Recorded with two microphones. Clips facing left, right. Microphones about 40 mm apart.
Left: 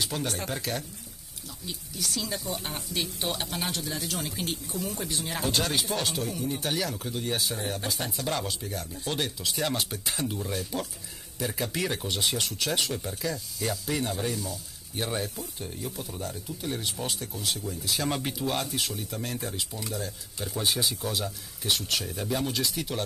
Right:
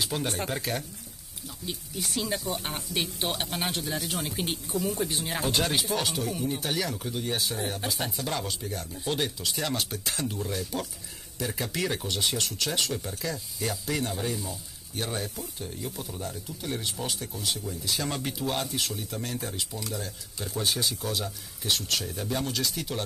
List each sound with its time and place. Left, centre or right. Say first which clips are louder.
0.2 s speech: right 1 dB; right
1.7 s speech: even; right
4.5 s speech: right 3 dB; right
4.9 s speech: right 2 dB; centre
6.0 s speech: right 1 dB; centre
6.3 s speech: right 1 dB; centre
6.6 s speech: even; centre
11.8 s speech: right 1 dB; centre
12.9 s speech: left 1 dB; centre
15.8 s speech: even; centre
17.9 s speech: left 3 dB; centre